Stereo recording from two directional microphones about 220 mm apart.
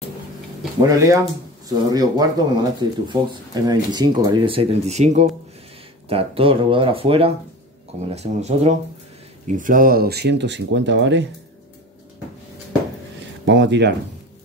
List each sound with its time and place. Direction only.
0.8 s speech: 15° right (ahead or behind); by 11.2 s 55° right (ahead or behind)
13.5 s speech: 55° right (ahead or behind)